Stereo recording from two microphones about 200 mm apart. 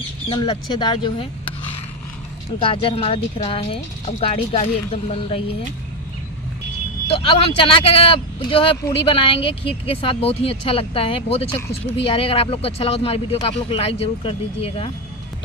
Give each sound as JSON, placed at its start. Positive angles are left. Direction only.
{"t": 0.3, "sound": "speech", "side_deg": 25}
{"t": 2.6, "sound": "speech", "side_deg": 25}
{"t": 7.1, "sound": "speech", "side_deg": 25}